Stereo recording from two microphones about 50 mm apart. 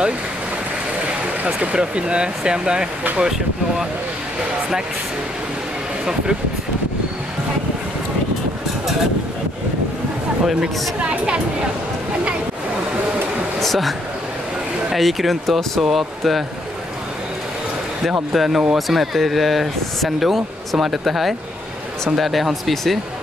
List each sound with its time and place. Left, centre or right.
1.2 s speech: right
10.4 s speech: centre
11.0 s speech: right
13.6 s speech: centre
15.0 s speech: centre
18.3 s speech: centre